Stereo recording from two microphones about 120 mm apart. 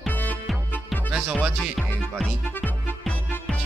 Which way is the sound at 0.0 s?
15° left (ahead or behind).